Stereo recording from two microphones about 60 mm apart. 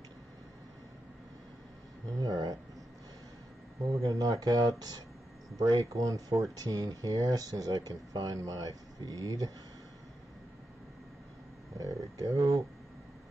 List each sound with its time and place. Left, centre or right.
2.1 s speech: right
4.0 s speech: right
11.8 s bird: right